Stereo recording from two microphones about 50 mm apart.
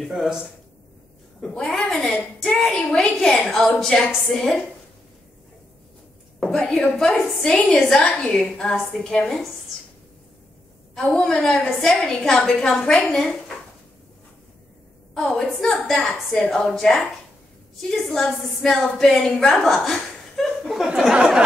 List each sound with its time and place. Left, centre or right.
0.0 s speech: centre
1.5 s a woman's voice: centre
3.2 s a woman's voice: centre
6.5 s a woman's voice: centre
11.0 s a woman's voice: centre
15.1 s a woman's voice: centre
19.6 s chuckle: centre
20.8 s a sound: centre